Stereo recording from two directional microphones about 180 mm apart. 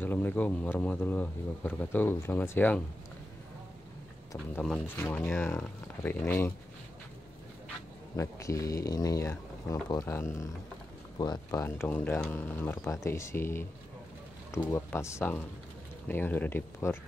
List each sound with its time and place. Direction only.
0.0 s speech: 10° left (ahead or behind)
4.6 s speech: 10° left (ahead or behind)
8.2 s speech: 15° left (ahead or behind)